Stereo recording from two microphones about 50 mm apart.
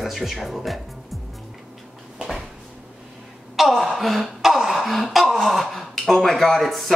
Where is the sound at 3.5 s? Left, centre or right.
Centre.